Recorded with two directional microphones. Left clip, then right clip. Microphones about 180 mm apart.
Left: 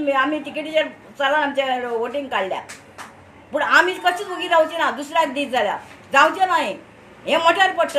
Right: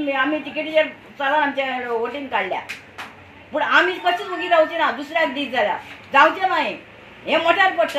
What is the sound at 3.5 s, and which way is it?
A woman's voice, 20° left (ahead or behind).